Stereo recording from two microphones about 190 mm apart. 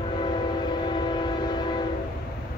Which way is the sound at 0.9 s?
25° left (ahead or behind).